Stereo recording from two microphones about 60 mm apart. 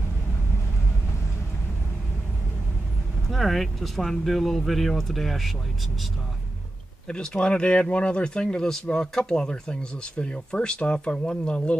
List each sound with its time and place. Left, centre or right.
3.3 s speech: centre
7.1 s speech: centre